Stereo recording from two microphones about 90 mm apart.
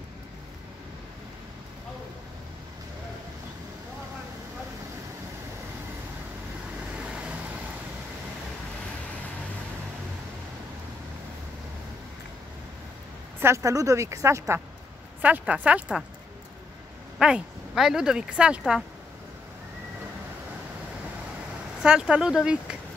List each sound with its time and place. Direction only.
7.0 s vehicle: 15° right (ahead or behind)
13.4 s a woman's voice: 35° right (ahead or behind)
15.2 s speech: 15° right (ahead or behind)
17.2 s speech: 5° right (ahead or behind)
21.8 s speech: 10° right (ahead or behind)